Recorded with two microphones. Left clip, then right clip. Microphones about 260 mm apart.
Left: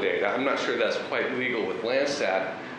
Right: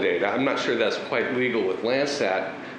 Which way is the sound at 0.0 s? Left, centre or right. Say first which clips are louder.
Right 2 dB; left.